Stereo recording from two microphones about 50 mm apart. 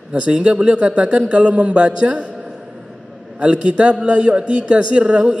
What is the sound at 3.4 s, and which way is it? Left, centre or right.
A man's voice, right.